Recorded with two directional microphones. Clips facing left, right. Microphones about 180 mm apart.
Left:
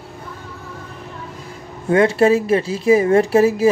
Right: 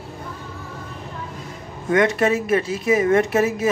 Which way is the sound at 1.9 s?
30° left (ahead or behind).